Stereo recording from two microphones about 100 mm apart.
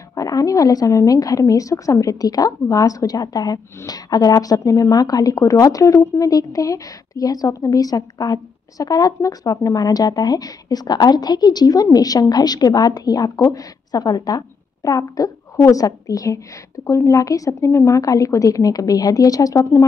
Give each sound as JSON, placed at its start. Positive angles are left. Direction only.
{"t": 0.1, "sound": "a woman's voice", "side_deg": 35}